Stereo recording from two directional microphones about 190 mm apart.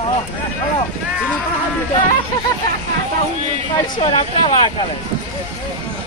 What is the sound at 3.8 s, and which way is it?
Speech, 30° left (ahead or behind).